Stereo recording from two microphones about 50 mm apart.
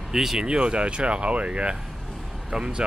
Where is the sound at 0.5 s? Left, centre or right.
Centre.